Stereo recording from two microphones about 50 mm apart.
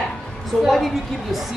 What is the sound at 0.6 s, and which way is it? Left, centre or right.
Speech, centre.